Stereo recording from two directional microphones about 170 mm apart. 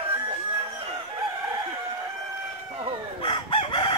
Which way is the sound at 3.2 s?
30° left (ahead or behind).